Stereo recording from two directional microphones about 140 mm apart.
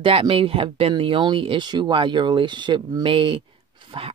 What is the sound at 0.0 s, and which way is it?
Speech, 40° right (ahead or behind).